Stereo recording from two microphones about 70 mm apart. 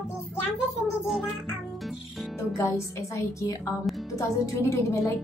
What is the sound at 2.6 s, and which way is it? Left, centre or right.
A woman's voice, left.